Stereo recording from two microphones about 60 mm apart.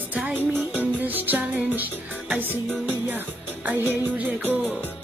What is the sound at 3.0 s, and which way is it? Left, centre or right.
Music, right.